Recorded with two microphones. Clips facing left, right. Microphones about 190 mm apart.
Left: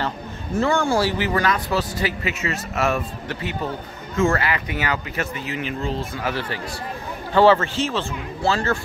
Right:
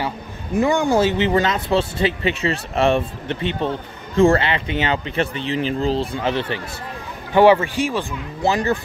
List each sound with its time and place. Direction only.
0.6 s speech: 15° right (ahead or behind)